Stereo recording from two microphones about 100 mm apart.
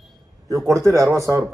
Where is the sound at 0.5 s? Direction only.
35° right (ahead or behind).